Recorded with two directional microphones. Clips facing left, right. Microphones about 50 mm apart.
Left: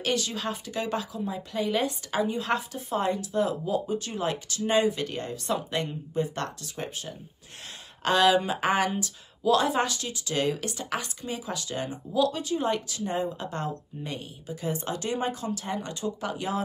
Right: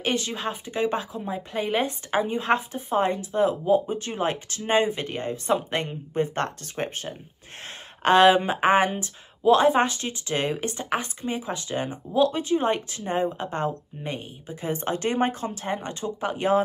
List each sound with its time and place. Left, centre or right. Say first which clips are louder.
0.0 s speech: right 2 dB; right